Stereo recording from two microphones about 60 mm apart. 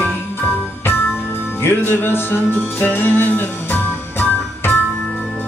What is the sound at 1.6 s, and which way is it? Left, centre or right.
Music, left.